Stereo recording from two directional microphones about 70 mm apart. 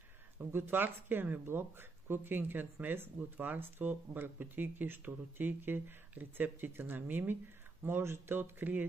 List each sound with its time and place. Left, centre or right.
0.4 s speech: right